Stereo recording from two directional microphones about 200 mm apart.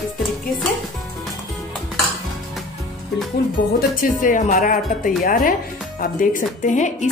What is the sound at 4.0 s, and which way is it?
Speech, 40° left (ahead or behind).